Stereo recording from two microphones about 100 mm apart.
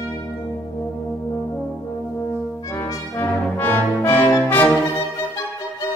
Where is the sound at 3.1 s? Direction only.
20° left (ahead or behind).